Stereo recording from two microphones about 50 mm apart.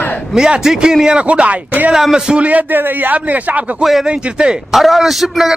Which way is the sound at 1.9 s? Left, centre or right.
Centre.